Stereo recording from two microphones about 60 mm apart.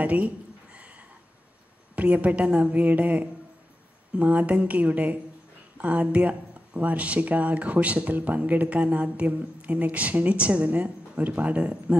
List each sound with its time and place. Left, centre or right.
0.0 s speech: right
0.7 s a sound: right
2.0 s speech: right